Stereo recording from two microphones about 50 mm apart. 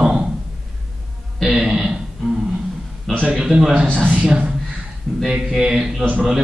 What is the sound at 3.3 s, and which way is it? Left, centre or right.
A man's voice, centre.